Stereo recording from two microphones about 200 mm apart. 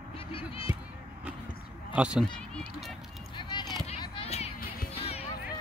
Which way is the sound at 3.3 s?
20° left (ahead or behind).